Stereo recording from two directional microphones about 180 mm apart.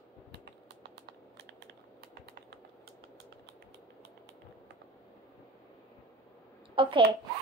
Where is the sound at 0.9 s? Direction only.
65° right (ahead or behind).